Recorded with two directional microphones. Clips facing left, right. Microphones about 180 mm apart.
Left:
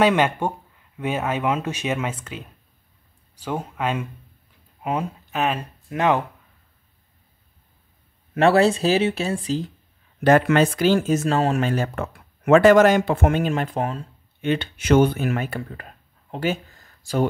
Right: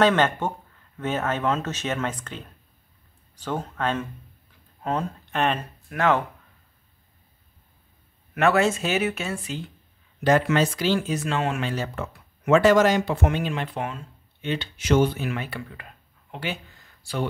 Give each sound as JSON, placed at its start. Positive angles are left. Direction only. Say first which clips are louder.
{"t": 0.0, "sound": "speech", "louder": "left 2 dB", "side_deg": 10}
{"t": 5.9, "sound": "speech", "louder": "left 2 dB", "side_deg": 15}
{"t": 8.4, "sound": "speech", "louder": "left 4 dB", "side_deg": 30}
{"t": 10.2, "sound": "speech", "louder": "left 4 dB", "side_deg": 55}
{"t": 14.4, "sound": "speech", "louder": "left 6 dB", "side_deg": 55}